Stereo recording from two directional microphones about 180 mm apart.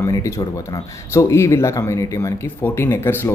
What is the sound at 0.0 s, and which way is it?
Speech, 15° left (ahead or behind).